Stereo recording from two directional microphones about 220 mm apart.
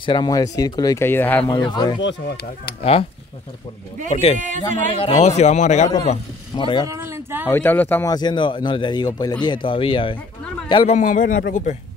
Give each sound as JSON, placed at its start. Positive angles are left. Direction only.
{"t": 0.0, "sound": "speech", "side_deg": 20}
{"t": 2.0, "sound": "speech", "side_deg": 55}
{"t": 2.8, "sound": "speech", "side_deg": 25}
{"t": 4.1, "sound": "a man's voice", "side_deg": 25}
{"t": 6.9, "sound": "a sound", "side_deg": -10}
{"t": 7.4, "sound": "speech", "side_deg": 10}
{"t": 11.0, "sound": "a man's voice", "side_deg": 35}